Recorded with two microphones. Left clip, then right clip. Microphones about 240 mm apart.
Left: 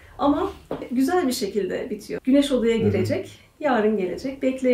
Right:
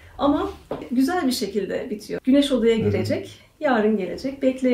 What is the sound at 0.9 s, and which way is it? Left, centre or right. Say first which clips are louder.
Speech: even; centre.